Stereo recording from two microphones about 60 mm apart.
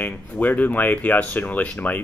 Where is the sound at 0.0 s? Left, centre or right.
Left.